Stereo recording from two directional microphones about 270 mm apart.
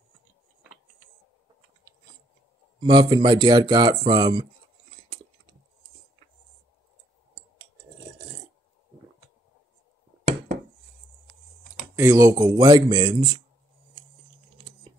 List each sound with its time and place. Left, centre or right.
2.8 s a man's voice: centre
11.9 s a man's voice: centre